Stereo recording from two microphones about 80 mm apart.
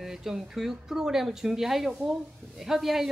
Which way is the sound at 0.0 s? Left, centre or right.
Centre.